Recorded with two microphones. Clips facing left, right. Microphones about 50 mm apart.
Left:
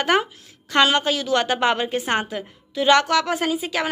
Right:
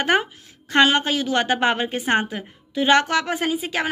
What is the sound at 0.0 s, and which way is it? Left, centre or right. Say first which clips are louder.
A woman's voice: even; right.